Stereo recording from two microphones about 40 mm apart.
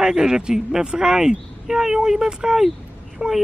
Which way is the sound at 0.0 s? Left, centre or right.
Centre.